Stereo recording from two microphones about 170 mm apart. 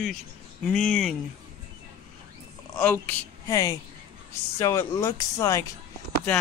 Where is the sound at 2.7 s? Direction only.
10° left (ahead or behind).